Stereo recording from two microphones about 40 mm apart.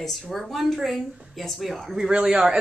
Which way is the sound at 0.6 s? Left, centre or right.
Centre.